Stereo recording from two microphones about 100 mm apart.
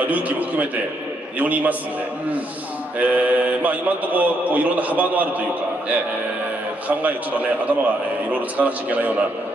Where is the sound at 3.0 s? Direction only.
15° right (ahead or behind).